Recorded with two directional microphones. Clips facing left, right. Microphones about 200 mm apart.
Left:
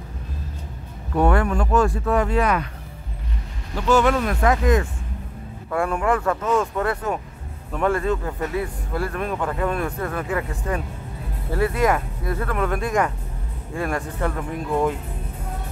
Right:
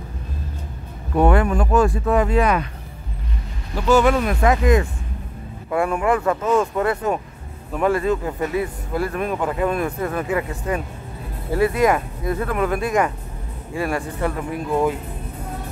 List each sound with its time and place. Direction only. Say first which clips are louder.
1.1 s speech: right 2 dB; 15° right (ahead or behind)
3.7 s speech: right 2 dB; 10° right (ahead or behind)